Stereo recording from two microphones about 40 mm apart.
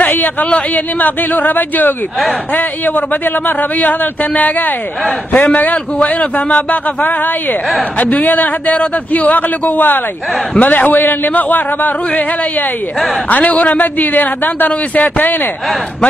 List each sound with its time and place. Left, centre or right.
0.0 s a sound: left
0.7 s speech: left
3.4 s speech: left
5.4 s a man's voice: left
13.5 s speech: left